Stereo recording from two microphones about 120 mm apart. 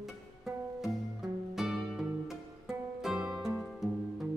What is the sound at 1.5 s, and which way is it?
Music, 5° right (ahead or behind).